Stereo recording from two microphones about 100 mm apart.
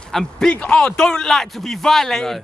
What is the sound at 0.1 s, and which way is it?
Speech, 5° left (ahead or behind).